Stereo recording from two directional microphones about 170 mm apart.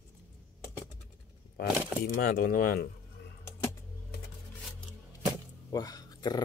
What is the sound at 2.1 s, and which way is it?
Speech, 60° left (ahead or behind).